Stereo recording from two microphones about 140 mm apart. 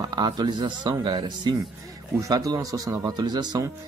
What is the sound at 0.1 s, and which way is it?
Speech, 30° right (ahead or behind).